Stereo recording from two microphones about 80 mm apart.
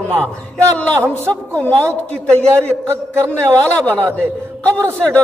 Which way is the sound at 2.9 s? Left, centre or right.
Right.